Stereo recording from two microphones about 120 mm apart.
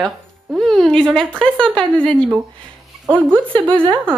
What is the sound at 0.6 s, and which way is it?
A woman's voice, centre (ahead or behind).